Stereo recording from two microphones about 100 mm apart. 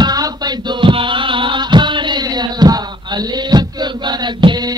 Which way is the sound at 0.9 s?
55° right (ahead or behind).